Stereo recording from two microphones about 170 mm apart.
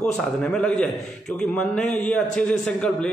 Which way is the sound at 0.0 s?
5° left (ahead or behind).